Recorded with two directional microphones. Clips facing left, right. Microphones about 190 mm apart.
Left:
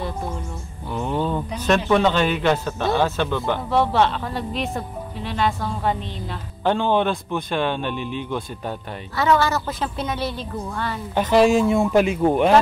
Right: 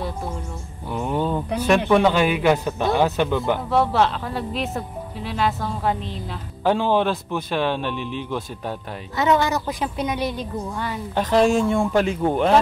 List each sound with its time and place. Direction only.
0.9 s a woman's voice: 10° right (ahead or behind)
3.7 s speech: centre (ahead or behind)
9.1 s a woman's voice: 20° right (ahead or behind)
11.1 s speech: 5° left (ahead or behind)